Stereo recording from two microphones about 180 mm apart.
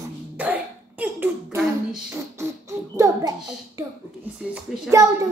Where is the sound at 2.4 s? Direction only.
15° right (ahead or behind).